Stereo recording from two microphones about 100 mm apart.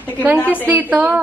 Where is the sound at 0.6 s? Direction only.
15° right (ahead or behind).